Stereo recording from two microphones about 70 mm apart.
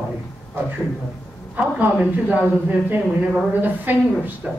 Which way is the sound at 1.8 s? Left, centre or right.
Right.